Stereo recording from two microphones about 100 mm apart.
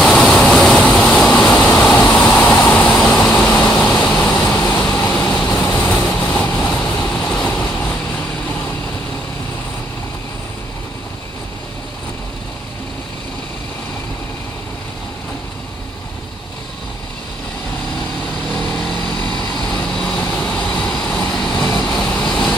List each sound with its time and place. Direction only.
0.0 s vehicle: 5° left (ahead or behind)
18.5 s vehicle: 20° left (ahead or behind)